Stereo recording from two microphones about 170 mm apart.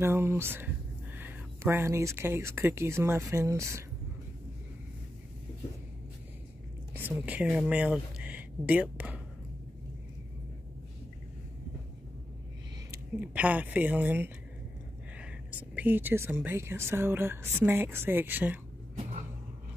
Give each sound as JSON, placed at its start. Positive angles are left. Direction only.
{"t": 0.0, "sound": "speech", "side_deg": -15}
{"t": 7.0, "sound": "speech", "side_deg": -10}
{"t": 12.9, "sound": "speech", "side_deg": -10}